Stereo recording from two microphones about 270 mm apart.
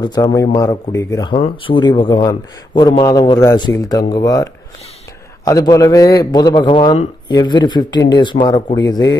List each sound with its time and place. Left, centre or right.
0.0 s speech: centre